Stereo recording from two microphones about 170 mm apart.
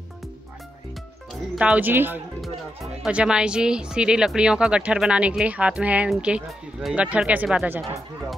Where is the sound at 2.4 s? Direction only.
Centre (ahead or behind).